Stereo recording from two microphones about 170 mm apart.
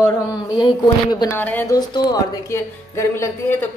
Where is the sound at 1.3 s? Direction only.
10° left (ahead or behind).